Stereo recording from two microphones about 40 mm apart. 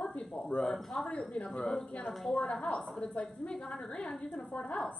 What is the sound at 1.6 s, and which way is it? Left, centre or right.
Speech, centre.